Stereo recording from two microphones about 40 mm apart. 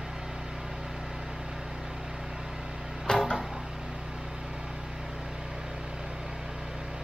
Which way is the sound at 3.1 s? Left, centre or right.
Centre.